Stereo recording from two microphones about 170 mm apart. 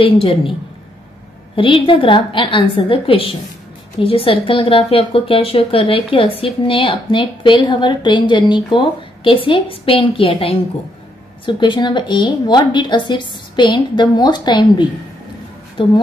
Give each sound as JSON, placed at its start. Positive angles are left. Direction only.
{"t": 0.0, "sound": "speech", "side_deg": 30}
{"t": 1.5, "sound": "a woman's voice", "side_deg": 30}